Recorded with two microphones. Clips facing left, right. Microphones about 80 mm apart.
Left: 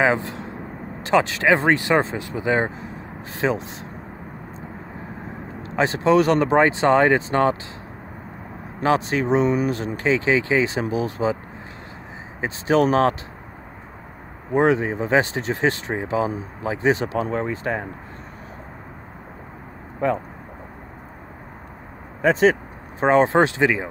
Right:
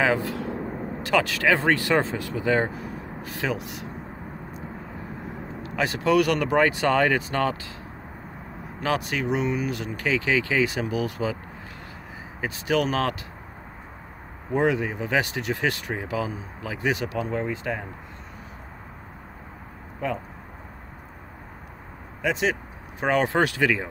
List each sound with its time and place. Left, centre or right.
0.0 s speech: left
5.6 s speech: left
8.8 s speech: left
12.4 s speech: left
14.5 s speech: left
22.2 s speech: left